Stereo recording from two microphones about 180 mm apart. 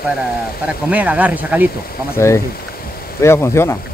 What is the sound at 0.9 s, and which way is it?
Speech, 10° right (ahead or behind).